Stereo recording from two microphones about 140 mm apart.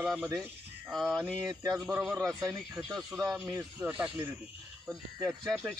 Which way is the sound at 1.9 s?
10° right (ahead or behind).